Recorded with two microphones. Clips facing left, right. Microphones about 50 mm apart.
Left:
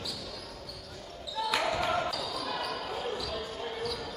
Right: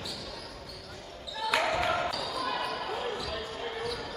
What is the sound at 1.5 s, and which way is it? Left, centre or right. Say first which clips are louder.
Basketball bounce: right 2 dB; right.